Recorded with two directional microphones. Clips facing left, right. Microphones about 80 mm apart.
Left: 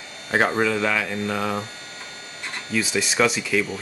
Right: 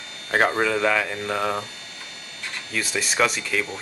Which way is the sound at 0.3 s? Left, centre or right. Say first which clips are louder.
Even; centre.